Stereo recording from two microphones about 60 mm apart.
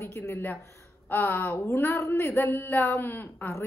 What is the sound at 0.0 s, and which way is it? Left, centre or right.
Speech, left.